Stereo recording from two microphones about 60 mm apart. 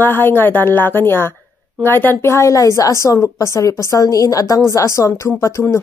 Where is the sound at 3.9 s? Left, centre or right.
Left.